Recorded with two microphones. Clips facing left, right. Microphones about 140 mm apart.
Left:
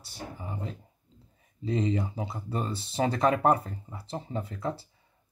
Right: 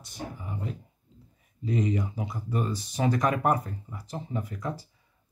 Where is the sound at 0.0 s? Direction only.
30° left (ahead or behind).